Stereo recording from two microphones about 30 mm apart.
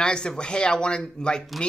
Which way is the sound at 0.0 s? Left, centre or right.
Left.